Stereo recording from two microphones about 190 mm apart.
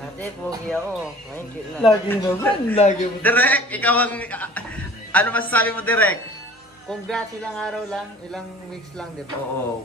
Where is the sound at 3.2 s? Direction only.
10° left (ahead or behind).